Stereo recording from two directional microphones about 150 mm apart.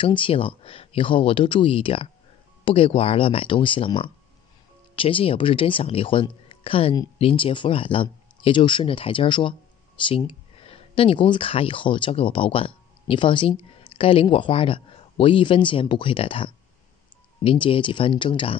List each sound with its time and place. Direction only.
0.0 s speech: 35° left (ahead or behind)